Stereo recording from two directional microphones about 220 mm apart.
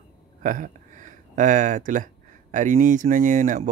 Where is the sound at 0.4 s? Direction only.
35° right (ahead or behind).